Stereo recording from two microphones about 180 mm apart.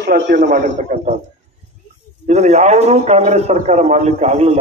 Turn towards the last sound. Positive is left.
turn(degrees=-35)  # may be behind; listen again after turning